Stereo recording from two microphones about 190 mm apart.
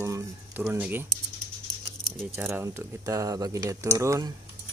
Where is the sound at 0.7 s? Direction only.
10° right (ahead or behind).